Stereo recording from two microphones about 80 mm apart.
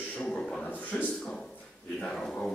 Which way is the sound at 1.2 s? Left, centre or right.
Centre.